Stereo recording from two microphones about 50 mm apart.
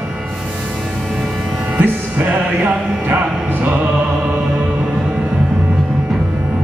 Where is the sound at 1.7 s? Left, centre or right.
Right.